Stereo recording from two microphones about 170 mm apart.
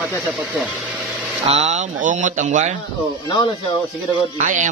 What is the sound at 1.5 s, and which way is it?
Speech, 45° right (ahead or behind).